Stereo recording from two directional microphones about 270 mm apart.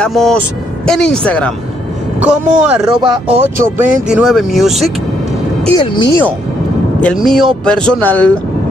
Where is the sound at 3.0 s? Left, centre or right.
Centre.